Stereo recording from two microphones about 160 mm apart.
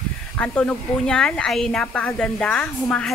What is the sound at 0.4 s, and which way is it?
Speech, 5° left (ahead or behind).